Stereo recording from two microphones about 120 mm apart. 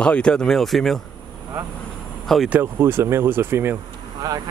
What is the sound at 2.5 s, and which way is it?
Speech, 15° right (ahead or behind).